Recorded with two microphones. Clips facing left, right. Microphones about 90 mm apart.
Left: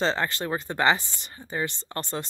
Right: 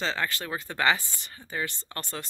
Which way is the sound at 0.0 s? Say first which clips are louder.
Left 4 dB; 25° left (ahead or behind).